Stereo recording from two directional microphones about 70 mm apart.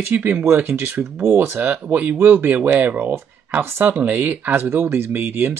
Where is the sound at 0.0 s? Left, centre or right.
Right.